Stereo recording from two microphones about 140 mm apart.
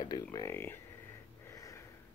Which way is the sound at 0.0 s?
30° left (ahead or behind).